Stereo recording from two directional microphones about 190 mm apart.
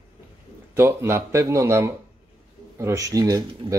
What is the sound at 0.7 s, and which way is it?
Speech, 15° right (ahead or behind).